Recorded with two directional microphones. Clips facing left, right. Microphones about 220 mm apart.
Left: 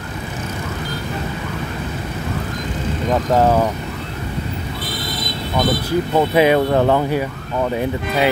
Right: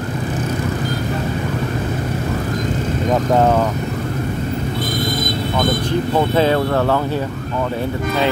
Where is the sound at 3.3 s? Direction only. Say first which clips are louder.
Left 1 dB; 5° left (ahead or behind).